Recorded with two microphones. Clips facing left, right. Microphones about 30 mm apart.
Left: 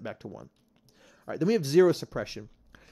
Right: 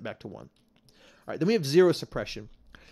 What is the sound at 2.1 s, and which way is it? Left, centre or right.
Speech, right.